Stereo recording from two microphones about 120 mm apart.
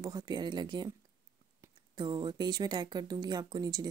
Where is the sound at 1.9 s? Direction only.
35° right (ahead or behind).